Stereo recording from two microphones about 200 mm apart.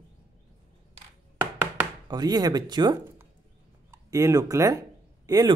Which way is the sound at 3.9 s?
15° right (ahead or behind).